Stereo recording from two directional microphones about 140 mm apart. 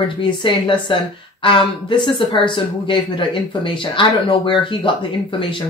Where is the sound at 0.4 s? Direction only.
35° left (ahead or behind).